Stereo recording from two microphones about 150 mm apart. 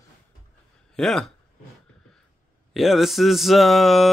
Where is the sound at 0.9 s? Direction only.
5° left (ahead or behind).